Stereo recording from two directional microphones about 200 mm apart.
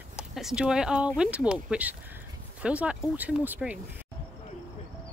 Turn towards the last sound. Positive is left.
turn(degrees=-10)  # may be behind; listen again after turning